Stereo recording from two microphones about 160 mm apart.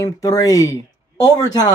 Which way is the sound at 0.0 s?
20° left (ahead or behind).